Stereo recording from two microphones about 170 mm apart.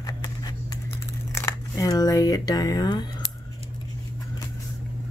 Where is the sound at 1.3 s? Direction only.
15° left (ahead or behind).